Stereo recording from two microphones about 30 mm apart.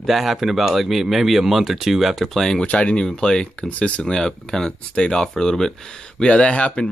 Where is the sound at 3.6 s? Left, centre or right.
Left.